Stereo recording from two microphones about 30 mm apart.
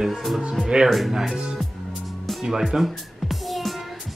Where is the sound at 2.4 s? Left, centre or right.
Centre.